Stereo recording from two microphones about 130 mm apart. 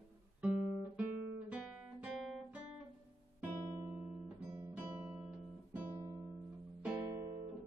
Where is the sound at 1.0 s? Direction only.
10° right (ahead or behind).